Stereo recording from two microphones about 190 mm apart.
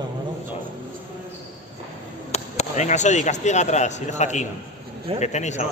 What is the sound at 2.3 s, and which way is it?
A man's voice, 35° left (ahead or behind).